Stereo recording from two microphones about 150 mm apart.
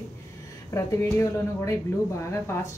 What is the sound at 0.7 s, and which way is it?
Speech, 20° left (ahead or behind).